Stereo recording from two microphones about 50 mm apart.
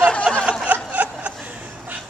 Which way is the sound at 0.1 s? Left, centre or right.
Centre.